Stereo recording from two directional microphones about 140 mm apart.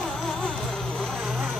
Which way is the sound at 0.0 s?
5° left (ahead or behind).